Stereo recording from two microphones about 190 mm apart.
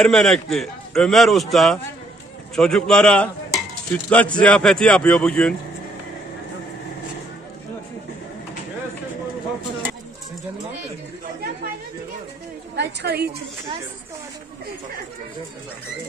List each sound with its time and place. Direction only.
0.0 s a man's voice: 5° left (ahead or behind)
2.5 s cutlery: 5° left (ahead or behind)
4.4 s a man's voice: 5° left (ahead or behind)
12.7 s a woman's voice: 55° right (ahead or behind)